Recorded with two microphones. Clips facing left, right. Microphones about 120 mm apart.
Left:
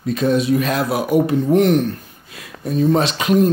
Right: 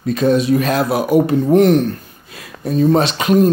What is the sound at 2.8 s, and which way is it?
Speech, 35° right (ahead or behind).